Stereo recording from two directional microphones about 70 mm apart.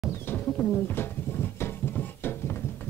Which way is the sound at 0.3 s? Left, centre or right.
Left.